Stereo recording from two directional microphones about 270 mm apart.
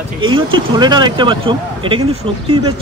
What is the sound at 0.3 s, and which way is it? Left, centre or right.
Speech, centre.